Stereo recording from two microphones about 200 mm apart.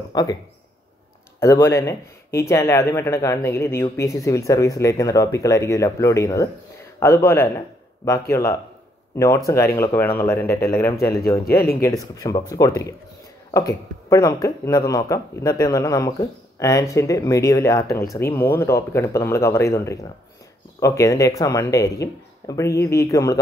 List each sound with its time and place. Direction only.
0.1 s speech: 20° left (ahead or behind)
1.4 s speech: 15° left (ahead or behind)
11.4 s speech: 50° left (ahead or behind)
11.8 s speech: 15° left (ahead or behind)